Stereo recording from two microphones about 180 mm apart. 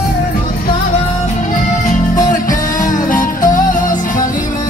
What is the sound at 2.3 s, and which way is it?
Music, 50° left (ahead or behind).